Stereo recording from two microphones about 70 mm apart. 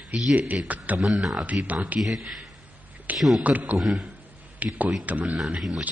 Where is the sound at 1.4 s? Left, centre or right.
Right.